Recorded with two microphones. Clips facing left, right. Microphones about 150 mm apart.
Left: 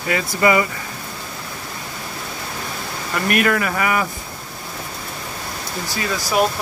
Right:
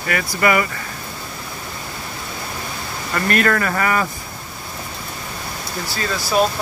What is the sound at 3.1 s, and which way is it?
Speech, 15° left (ahead or behind).